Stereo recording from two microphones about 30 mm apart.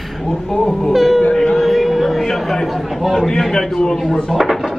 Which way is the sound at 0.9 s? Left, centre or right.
Centre.